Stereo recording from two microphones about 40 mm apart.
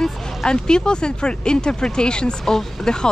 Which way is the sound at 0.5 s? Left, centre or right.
Left.